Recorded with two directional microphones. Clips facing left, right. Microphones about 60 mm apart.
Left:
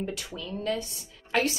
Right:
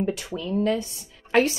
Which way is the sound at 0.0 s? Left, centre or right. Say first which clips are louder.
Right 7 dB; right.